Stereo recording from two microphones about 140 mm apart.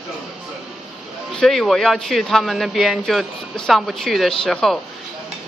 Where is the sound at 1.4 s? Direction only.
Centre (ahead or behind).